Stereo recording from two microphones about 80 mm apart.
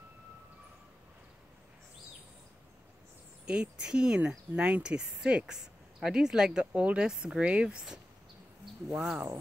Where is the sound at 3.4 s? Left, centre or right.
Centre.